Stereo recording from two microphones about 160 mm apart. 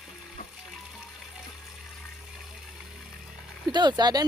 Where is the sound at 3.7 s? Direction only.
25° right (ahead or behind).